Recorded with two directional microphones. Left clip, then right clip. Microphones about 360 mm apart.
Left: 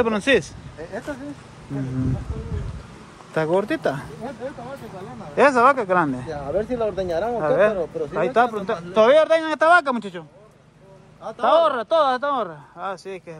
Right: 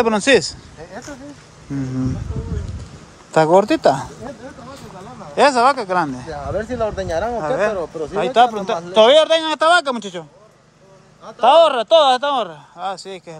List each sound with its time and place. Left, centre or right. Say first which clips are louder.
0.0 s a man's voice: right 5 dB; centre
3.3 s a man's voice: right 8 dB; centre
5.3 s a man's voice: right 2 dB; centre
6.3 s speech: right 1 dB; right
7.4 s a man's voice: left 1 dB; centre
11.4 s a man's voice: right 6 dB; centre